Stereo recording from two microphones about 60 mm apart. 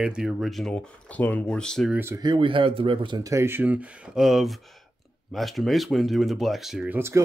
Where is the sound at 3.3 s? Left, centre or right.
Right.